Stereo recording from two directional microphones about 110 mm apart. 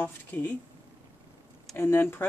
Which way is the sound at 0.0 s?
15° left (ahead or behind).